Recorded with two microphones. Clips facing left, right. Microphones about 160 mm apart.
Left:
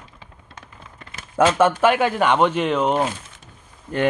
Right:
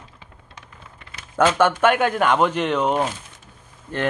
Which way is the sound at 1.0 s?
45° left (ahead or behind).